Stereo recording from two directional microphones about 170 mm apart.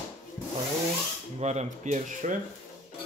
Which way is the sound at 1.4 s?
40° right (ahead or behind).